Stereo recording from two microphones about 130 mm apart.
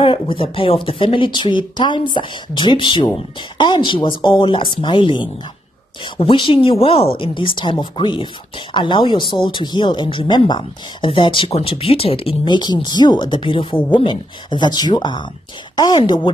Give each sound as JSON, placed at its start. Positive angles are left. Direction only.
{"t": 0.0, "sound": "speech", "side_deg": 40}